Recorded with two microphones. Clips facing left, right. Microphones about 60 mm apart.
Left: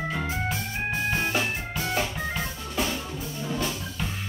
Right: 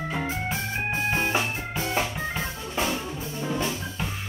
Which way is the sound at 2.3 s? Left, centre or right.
Right.